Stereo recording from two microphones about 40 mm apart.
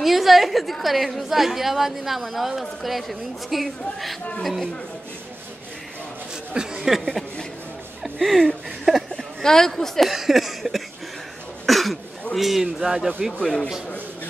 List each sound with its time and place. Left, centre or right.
0.0 s a woman's voice: centre
6.5 s a sound: centre
7.0 s speech: centre
10.0 s a woman's voice: centre
13.4 s speech: centre